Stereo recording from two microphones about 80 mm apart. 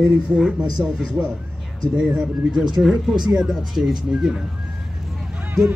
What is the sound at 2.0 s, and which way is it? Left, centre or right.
Speech, centre.